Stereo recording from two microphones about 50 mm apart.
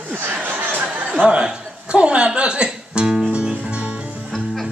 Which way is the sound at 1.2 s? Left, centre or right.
Right.